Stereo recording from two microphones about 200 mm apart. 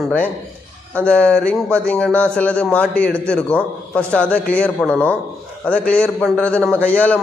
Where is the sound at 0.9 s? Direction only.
5° left (ahead or behind).